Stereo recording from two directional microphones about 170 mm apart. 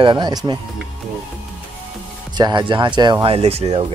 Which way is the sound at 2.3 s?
25° right (ahead or behind).